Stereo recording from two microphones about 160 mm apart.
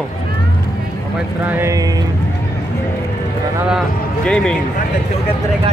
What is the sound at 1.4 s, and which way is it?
Speech, 10° right (ahead or behind).